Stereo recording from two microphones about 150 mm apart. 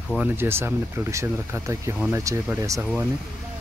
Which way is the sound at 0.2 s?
15° right (ahead or behind).